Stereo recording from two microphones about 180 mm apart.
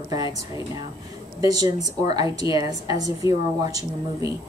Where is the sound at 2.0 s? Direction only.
30° left (ahead or behind).